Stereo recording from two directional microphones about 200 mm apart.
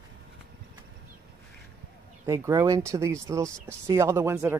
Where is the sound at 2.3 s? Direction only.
15° right (ahead or behind).